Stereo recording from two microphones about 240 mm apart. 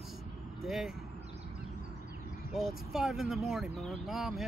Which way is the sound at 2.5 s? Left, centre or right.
Centre.